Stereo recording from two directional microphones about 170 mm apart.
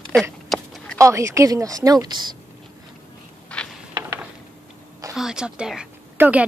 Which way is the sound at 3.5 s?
5° left (ahead or behind).